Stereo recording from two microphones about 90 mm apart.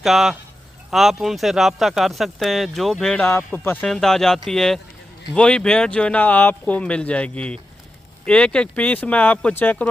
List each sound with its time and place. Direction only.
0.0 s speech: 5° right (ahead or behind)
3.2 s speech: 25° left (ahead or behind)
3.8 s speech: 5° left (ahead or behind)